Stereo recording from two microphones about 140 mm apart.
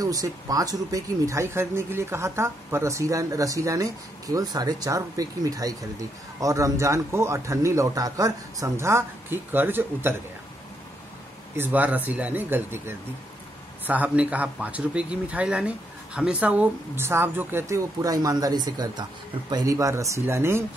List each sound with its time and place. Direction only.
0.0 s speech: 25° right (ahead or behind)
11.5 s speech: 15° right (ahead or behind)